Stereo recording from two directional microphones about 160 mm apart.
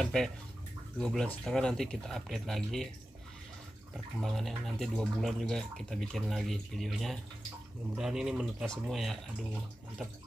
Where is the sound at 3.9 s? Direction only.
Centre (ahead or behind).